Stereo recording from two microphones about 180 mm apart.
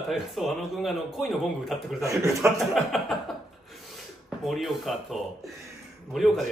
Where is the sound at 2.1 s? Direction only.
15° right (ahead or behind).